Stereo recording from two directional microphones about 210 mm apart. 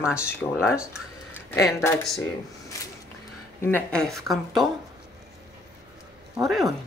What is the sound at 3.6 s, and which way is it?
Speech, 5° left (ahead or behind).